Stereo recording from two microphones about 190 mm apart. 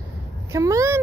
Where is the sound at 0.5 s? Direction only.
15° right (ahead or behind).